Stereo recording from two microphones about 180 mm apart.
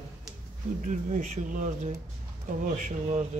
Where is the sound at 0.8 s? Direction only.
45° right (ahead or behind).